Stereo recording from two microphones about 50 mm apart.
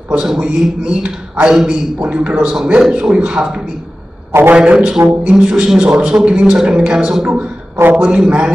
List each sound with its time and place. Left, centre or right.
0.2 s a man's voice: centre
4.3 s a man's voice: right
4.6 s a man's voice: centre